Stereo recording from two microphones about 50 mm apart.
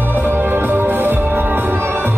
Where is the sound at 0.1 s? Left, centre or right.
Right.